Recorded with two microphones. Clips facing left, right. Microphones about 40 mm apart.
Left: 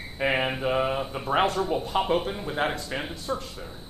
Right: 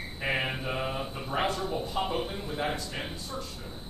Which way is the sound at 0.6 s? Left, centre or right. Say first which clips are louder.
Left 7 dB; left.